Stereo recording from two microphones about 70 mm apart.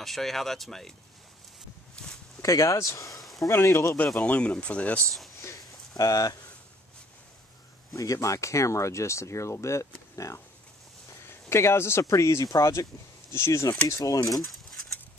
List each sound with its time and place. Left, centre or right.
0.0 s speech: centre
2.4 s speech: left
3.2 s a sound: centre
3.4 s speech: left
4.0 s speech: centre
5.9 s speech: left
7.9 s speech: left